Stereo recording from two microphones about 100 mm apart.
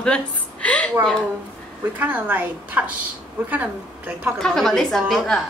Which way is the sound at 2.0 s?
15° right (ahead or behind).